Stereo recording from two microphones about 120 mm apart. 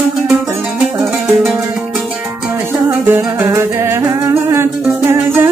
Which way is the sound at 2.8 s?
20° right (ahead or behind).